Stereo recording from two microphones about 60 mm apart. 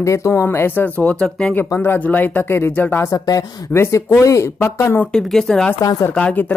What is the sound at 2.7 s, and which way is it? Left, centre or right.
Speech, left.